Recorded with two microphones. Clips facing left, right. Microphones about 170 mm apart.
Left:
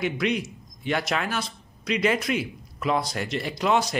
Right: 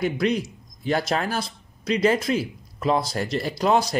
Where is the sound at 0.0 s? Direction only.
35° right (ahead or behind).